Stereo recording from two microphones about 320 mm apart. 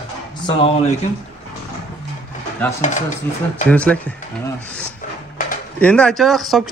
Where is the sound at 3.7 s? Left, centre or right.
Centre.